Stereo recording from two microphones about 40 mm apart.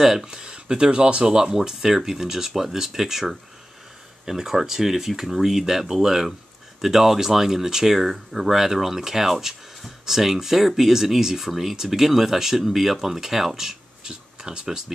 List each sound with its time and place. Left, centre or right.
0.2 s speech: centre